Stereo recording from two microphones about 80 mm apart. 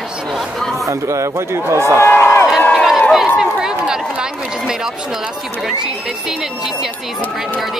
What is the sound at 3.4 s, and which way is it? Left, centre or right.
Run, centre.